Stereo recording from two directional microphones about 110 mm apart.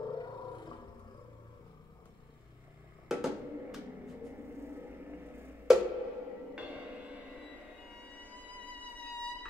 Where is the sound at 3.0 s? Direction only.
5° right (ahead or behind).